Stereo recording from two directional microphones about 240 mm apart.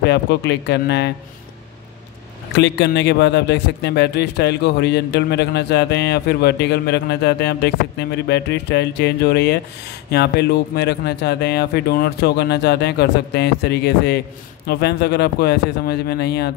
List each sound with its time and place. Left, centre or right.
0.0 s a man's voice: left
2.5 s a man's voice: left